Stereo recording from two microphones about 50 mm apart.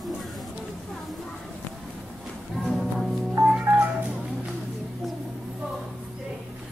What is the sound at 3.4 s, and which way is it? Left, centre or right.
Music, centre.